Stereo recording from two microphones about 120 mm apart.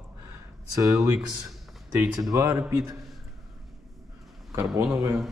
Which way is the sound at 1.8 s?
30° right (ahead or behind).